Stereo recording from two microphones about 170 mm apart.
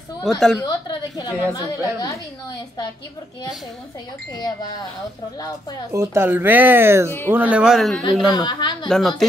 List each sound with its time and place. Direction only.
0.2 s speech: centre (ahead or behind)
0.6 s a woman's voice: 25° left (ahead or behind)
5.9 s speech: 15° right (ahead or behind)
8.3 s a woman's voice: 25° left (ahead or behind)
8.8 s speech: 5° left (ahead or behind)